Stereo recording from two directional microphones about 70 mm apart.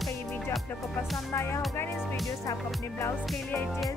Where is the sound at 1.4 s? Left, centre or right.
Left.